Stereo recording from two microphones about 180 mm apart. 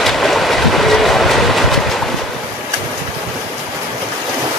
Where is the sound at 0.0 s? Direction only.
Centre (ahead or behind).